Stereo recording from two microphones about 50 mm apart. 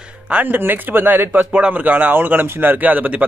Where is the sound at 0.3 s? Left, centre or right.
Right.